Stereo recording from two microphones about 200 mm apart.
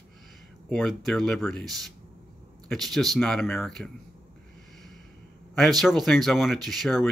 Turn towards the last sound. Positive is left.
turn(degrees=0)  # may be behind; listen again after turning